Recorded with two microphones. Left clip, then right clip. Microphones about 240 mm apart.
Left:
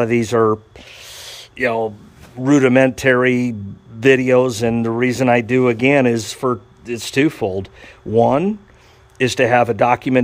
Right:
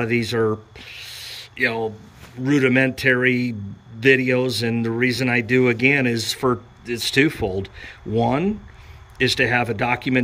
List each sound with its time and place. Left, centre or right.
0.0 s speech: centre
1.6 s speech: centre